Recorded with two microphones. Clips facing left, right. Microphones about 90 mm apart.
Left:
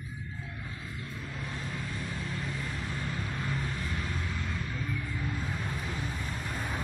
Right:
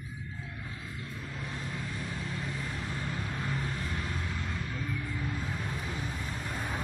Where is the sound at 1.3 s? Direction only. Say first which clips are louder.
Even; 5° right (ahead or behind).